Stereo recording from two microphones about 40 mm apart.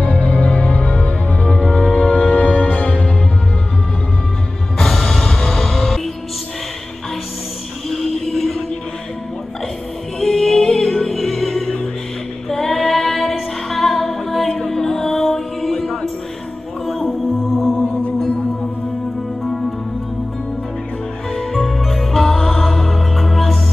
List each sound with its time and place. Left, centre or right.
0.0 s music: left
4.7 s music: centre
7.9 s music: centre
10.2 s music: centre
16.8 s music: centre
21.3 s music: centre